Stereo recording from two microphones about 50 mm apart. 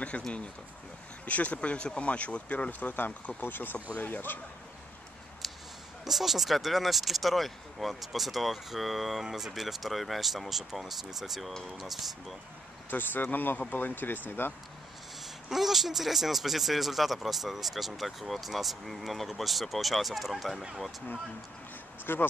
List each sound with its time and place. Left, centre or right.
0.1 s speech: left
2.8 s speech: left
5.4 s a sound: centre
6.0 s speech: centre
12.9 s speech: left
15.5 s speech: centre
22.1 s speech: left